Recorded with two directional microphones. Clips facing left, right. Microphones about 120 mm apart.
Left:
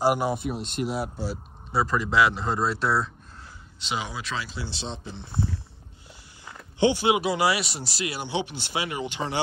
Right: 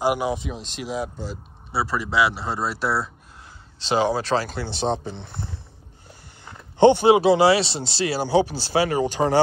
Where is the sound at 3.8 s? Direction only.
35° right (ahead or behind).